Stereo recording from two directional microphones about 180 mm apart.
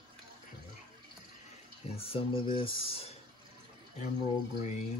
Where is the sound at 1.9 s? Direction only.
30° left (ahead or behind).